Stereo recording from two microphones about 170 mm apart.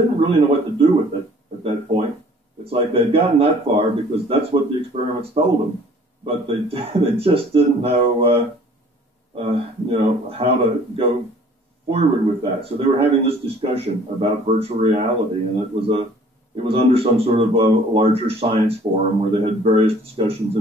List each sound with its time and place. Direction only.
0.2 s a man's voice: 35° right (ahead or behind)
1.6 s a sound: 35° right (ahead or behind)
2.6 s a man's voice: 35° right (ahead or behind)